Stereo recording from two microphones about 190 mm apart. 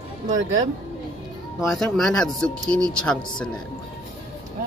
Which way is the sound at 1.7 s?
Centre (ahead or behind).